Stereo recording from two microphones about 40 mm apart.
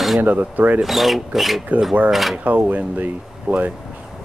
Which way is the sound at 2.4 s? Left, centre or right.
Right.